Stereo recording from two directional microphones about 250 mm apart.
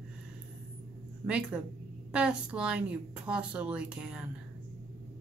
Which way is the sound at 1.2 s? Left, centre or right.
Centre.